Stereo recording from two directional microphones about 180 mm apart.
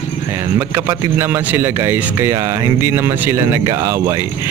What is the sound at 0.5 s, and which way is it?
A man's voice, 15° right (ahead or behind).